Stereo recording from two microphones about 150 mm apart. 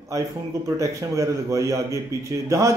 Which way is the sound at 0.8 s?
20° right (ahead or behind).